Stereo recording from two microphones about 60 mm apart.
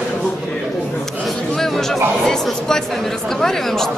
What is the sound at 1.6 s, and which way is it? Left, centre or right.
Speech, centre.